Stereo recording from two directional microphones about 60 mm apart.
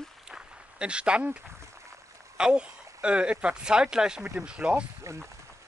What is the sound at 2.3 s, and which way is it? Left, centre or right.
Speech, centre.